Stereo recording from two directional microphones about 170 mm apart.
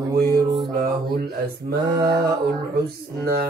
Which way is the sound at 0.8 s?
65° right (ahead or behind).